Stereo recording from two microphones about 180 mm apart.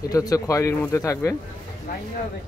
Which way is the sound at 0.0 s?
20° left (ahead or behind).